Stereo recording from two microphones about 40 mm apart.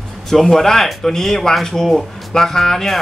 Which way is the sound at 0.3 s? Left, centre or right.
Centre.